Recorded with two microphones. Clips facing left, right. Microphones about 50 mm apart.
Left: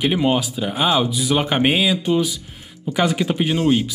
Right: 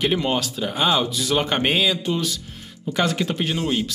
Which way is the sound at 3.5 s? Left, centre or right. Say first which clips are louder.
Left 8 dB; left.